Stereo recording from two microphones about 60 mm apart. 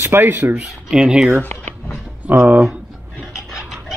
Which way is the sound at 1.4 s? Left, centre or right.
Left.